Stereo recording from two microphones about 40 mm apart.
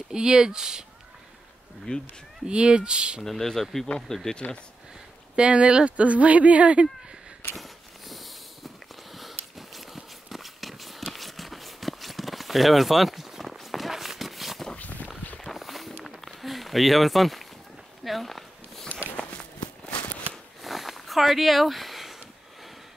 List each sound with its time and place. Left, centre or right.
0.1 s speech: centre
1.9 s speech: left
2.4 s speech: right
3.3 s speech: centre
5.3 s speech: right
7.5 s a sound: centre
11.1 s walk: centre
14.8 s walk: left
15.4 s a sound: centre
19.9 s shuffling cards: left
20.6 s a sound: centre